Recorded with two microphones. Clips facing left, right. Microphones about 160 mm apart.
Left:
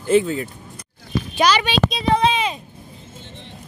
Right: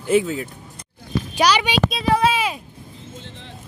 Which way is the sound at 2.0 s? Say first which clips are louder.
Even; 5° right (ahead or behind).